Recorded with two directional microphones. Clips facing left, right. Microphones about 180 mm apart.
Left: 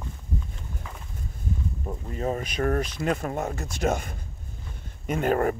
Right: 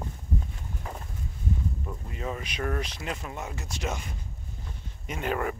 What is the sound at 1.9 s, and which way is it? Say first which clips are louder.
Speech: left 6 dB; 40° left (ahead or behind).